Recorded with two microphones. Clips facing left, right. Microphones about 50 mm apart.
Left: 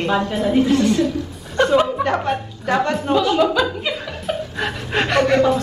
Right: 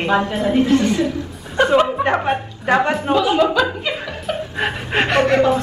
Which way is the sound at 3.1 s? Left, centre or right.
Centre.